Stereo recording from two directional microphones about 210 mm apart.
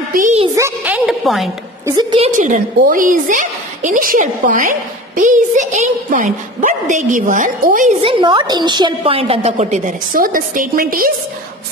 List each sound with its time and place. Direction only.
0.1 s music: 35° right (ahead or behind)
0.6 s a woman's voice: 10° right (ahead or behind)
1.9 s a woman's voice: 20° right (ahead or behind)
2.1 s a woman's voice: 30° right (ahead or behind)
8.0 s a woman's voice: 25° right (ahead or behind); by 11.1 s 40° right (ahead or behind)